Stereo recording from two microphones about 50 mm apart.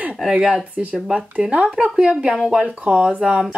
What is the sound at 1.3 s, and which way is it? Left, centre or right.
Speech, right.